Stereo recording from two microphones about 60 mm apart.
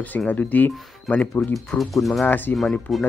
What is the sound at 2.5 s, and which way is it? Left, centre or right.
Speech, centre.